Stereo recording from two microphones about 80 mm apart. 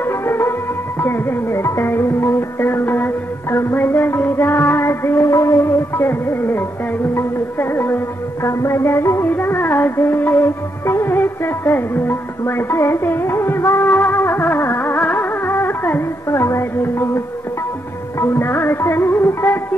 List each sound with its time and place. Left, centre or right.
0.0 s music: left
16.3 s music: left
18.2 s music: left